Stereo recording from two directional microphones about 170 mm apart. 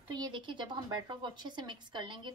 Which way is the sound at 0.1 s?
25° right (ahead or behind).